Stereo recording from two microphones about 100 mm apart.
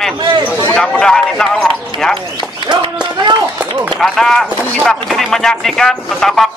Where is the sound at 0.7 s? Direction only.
10° left (ahead or behind).